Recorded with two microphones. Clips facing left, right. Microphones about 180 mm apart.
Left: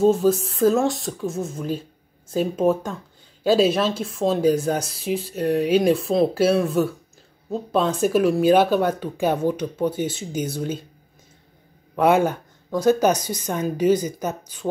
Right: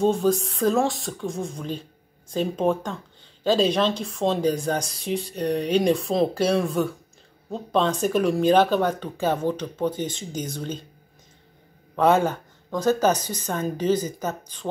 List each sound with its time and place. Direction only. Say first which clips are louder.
0.0 s speech: left 3 dB; 5° left (ahead or behind)
12.0 s speech: left 2 dB; 10° left (ahead or behind)